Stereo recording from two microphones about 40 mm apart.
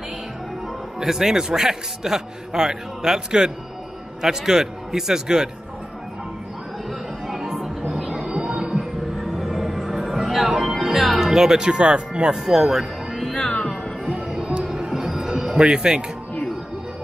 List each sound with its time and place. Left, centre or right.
0.9 s a man's voice: centre
6.9 s music: centre
8.2 s music: centre
9.2 s music: centre
10.6 s speech: centre; by 12.4 s right
12.4 s speech: centre
13.5 s music: left
14.9 s music: centre
15.6 s speech: right